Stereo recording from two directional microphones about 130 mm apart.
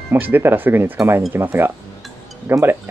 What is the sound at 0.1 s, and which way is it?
Speech, 15° right (ahead or behind).